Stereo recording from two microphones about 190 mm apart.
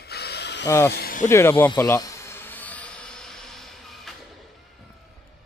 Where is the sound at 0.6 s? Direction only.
15° left (ahead or behind).